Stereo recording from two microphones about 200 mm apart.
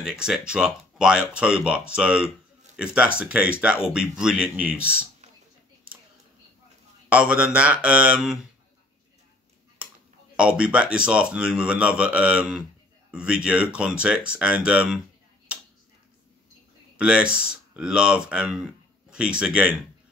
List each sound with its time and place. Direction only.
0.0 s speech: 5° right (ahead or behind)
7.1 s speech: 5° right (ahead or behind)
10.3 s speech: 5° right (ahead or behind)
17.0 s speech: 5° right (ahead or behind)